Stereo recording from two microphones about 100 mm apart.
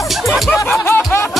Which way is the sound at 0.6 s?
25° left (ahead or behind).